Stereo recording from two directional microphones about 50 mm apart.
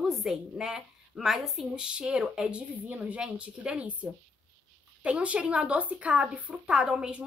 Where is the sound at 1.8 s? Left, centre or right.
Centre.